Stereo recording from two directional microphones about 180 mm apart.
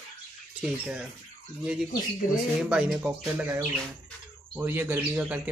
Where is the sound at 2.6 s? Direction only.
5° right (ahead or behind).